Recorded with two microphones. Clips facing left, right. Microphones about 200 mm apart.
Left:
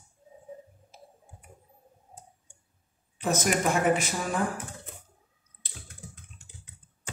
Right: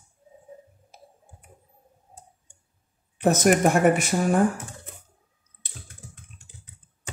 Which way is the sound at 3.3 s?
60° right (ahead or behind).